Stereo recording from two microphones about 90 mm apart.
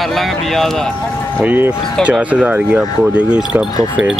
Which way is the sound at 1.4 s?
15° right (ahead or behind).